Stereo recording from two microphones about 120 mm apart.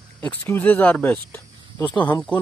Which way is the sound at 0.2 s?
10° left (ahead or behind).